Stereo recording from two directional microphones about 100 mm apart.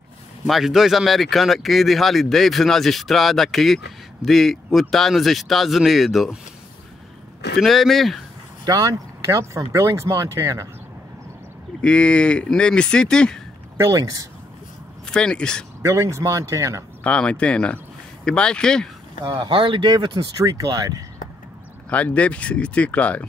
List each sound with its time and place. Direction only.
0.5 s speech: centre (ahead or behind)
7.6 s speech: centre (ahead or behind)
8.6 s speech: 40° right (ahead or behind)
11.8 s speech: 10° left (ahead or behind)
13.7 s speech: 30° right (ahead or behind)
15.0 s speech: 5° left (ahead or behind)
15.8 s speech: 30° right (ahead or behind)
17.0 s speech: 10° left (ahead or behind)
19.2 s speech: 50° right (ahead or behind)
20.4 s speech: 40° right (ahead or behind)
21.8 s speech: 15° left (ahead or behind)